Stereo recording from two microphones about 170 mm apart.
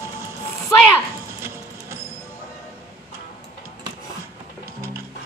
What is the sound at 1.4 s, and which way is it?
Music, 15° right (ahead or behind).